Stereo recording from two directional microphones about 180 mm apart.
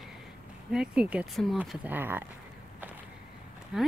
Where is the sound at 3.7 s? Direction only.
5° right (ahead or behind).